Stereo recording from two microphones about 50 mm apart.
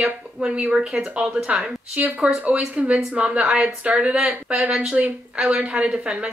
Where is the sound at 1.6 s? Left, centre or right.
Right.